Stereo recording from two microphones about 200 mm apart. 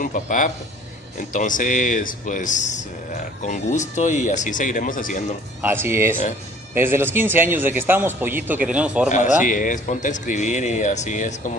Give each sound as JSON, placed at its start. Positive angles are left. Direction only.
{"t": 0.0, "sound": "speech", "side_deg": 40}
{"t": 5.6, "sound": "a man's voice", "side_deg": -10}
{"t": 9.4, "sound": "speech", "side_deg": 40}